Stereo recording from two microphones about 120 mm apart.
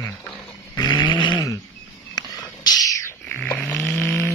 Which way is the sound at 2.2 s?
35° left (ahead or behind).